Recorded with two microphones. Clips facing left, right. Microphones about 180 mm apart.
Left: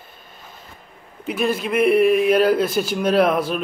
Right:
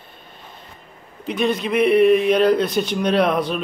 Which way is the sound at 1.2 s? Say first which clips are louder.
Right 1 dB; 5° left (ahead or behind).